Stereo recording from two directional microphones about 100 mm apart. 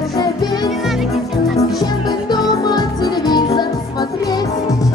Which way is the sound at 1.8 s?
45° left (ahead or behind).